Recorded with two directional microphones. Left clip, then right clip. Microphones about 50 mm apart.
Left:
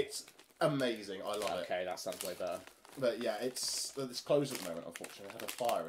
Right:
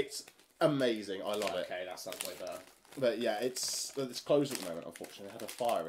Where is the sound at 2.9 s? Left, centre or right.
Right.